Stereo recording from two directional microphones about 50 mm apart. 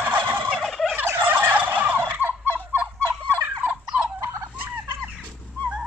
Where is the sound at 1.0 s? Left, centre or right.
Right.